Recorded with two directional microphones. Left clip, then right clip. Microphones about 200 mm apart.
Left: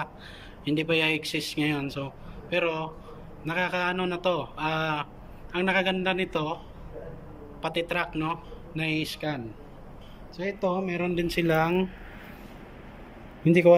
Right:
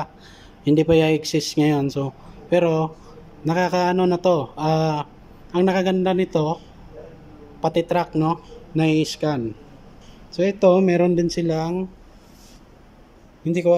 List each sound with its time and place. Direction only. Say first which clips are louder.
0.7 s speech: right 8 dB; 35° right (ahead or behind)
7.6 s speech: right 8 dB; 35° right (ahead or behind)
13.4 s a man's voice: even; 10° right (ahead or behind)